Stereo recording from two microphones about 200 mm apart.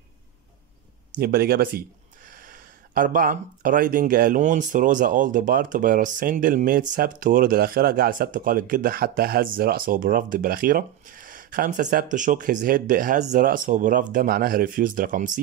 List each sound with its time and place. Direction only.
1.1 s speech: 50° right (ahead or behind)